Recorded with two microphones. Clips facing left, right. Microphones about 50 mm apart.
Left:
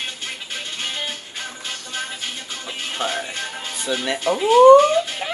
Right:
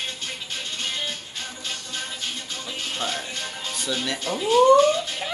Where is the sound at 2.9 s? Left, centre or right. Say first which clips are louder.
Left 6 dB; left.